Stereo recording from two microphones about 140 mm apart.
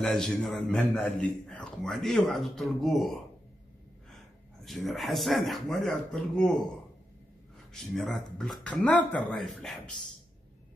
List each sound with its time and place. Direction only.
0.0 s a man's voice: 5° left (ahead or behind)
4.6 s a man's voice: centre (ahead or behind)
7.7 s a man's voice: centre (ahead or behind)